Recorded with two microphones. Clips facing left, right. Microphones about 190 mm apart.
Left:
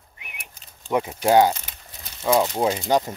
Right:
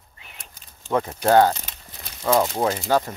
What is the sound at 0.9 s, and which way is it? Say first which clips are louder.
Speech: even; 15° left (ahead or behind).